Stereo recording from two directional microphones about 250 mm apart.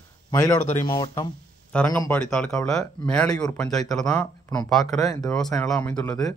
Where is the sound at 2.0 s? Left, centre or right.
Centre.